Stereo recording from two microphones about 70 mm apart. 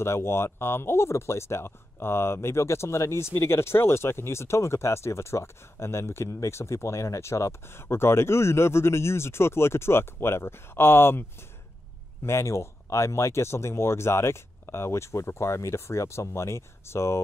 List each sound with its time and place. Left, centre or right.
0.0 s speech: left